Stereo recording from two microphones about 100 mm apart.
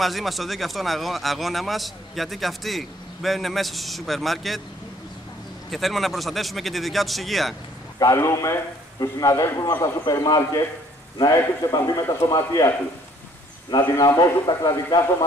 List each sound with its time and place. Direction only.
0.0 s speech: centre (ahead or behind)
5.7 s speech: centre (ahead or behind)
8.0 s a man's voice: 30° left (ahead or behind)